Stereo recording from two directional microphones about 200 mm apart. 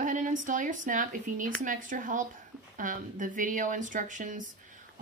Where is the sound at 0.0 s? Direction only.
40° right (ahead or behind).